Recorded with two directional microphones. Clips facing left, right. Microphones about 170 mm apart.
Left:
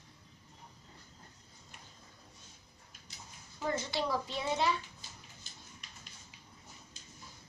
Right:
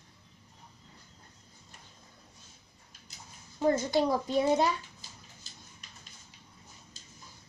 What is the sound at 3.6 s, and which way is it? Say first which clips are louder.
A child's voice: right 9 dB; 45° right (ahead or behind).